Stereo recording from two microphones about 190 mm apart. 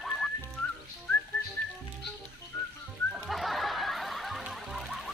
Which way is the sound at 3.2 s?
Centre (ahead or behind).